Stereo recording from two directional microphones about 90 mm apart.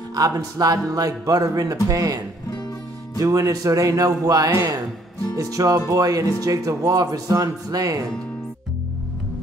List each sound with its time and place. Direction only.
0.1 s speech: 45° right (ahead or behind)
3.2 s speech: 40° right (ahead or behind)